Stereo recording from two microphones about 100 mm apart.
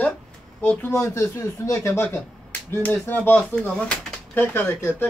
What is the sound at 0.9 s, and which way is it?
Speech, 30° left (ahead or behind).